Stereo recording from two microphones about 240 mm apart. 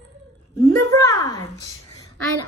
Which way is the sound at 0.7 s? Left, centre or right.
Centre.